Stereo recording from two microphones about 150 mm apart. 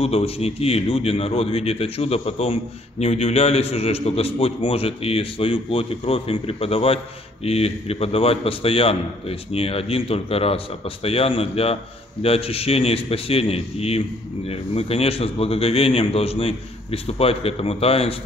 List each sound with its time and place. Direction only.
0.0 s a man's voice: 40° left (ahead or behind)